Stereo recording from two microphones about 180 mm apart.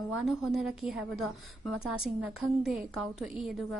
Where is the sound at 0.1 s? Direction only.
Centre (ahead or behind).